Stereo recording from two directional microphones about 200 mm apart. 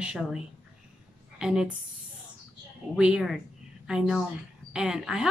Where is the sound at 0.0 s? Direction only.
5° right (ahead or behind).